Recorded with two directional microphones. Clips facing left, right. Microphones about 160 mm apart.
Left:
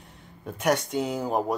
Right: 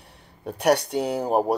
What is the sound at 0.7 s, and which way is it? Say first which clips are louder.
Speech: right 4 dB; 65° right (ahead or behind).